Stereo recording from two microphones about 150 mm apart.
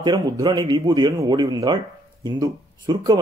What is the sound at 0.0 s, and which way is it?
Speech, 25° right (ahead or behind).